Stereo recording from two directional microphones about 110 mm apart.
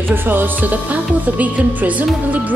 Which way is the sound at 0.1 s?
20° right (ahead or behind).